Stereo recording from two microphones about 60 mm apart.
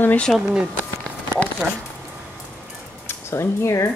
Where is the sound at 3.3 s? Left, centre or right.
Left.